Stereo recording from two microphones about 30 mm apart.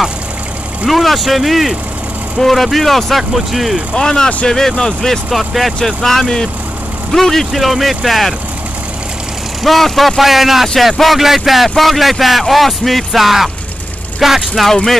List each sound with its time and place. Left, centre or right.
0.8 s speech: centre
3.9 s speech: centre
5.3 s speech: centre
5.9 s speech: centre
7.1 s speech: centre
7.6 s speech: centre
9.6 s speech: centre